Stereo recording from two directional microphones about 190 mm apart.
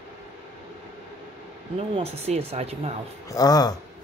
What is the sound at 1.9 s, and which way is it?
Speech, 35° right (ahead or behind).